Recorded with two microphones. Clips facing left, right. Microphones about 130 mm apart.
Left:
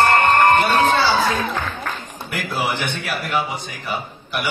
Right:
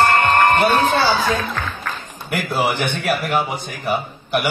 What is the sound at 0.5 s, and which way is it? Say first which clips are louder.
Speech: even; 40° right (ahead or behind).